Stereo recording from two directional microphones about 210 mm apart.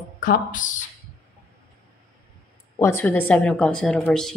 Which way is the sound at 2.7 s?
10° left (ahead or behind).